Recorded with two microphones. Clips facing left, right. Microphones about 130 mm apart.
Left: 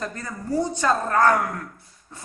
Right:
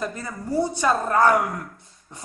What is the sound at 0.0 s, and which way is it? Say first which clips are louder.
A man's voice: right 2 dB; 10° right (ahead or behind).